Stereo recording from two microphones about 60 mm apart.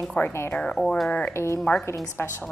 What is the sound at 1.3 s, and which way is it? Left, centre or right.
A woman's voice, left.